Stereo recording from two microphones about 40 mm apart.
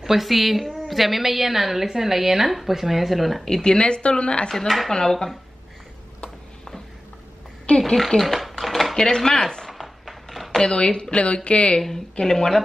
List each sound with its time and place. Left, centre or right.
0.0 s a woman's voice: centre
3.6 s speech: left
4.5 s speech: centre
7.8 s speech: centre
8.2 s a sound: centre
8.9 s speech: centre
9.7 s a sound: centre
10.6 s speech: left
12.2 s speech: centre